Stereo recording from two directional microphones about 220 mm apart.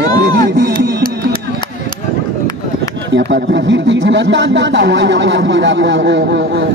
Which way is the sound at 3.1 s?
55° right (ahead or behind).